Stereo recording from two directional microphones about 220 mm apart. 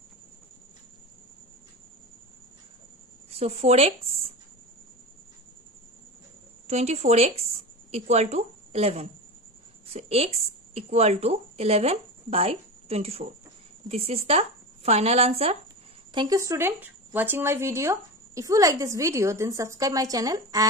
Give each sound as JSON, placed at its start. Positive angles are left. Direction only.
{"t": 3.3, "sound": "speech", "side_deg": -30}
{"t": 6.7, "sound": "a woman's voice", "side_deg": -30}